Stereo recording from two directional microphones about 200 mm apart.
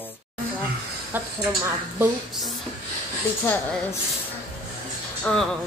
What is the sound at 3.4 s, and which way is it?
Speech, 10° left (ahead or behind).